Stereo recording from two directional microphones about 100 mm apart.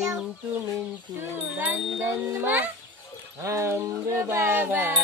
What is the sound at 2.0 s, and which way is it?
Speech, 20° right (ahead or behind).